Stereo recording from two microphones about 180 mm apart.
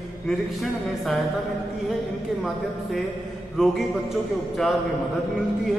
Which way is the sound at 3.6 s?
Centre (ahead or behind).